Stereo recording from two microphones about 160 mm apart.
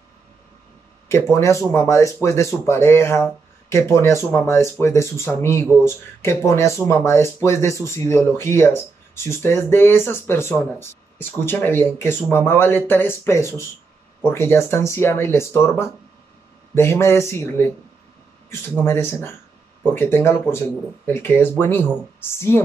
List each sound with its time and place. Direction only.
1.4 s speech: 15° left (ahead or behind)
18.5 s speech: 15° left (ahead or behind)